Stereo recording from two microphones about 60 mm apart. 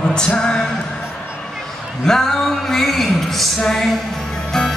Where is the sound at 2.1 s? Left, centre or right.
Centre.